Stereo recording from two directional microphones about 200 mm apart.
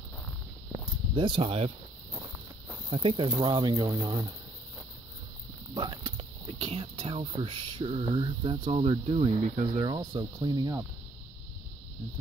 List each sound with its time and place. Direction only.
1.1 s speech: 25° right (ahead or behind)
2.9 s speech: 25° right (ahead or behind)
5.8 s speech: 25° right (ahead or behind)